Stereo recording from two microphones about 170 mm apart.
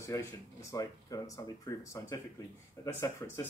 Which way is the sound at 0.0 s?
15° left (ahead or behind).